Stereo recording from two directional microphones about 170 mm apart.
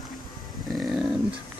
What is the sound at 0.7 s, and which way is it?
Dog, 5° right (ahead or behind).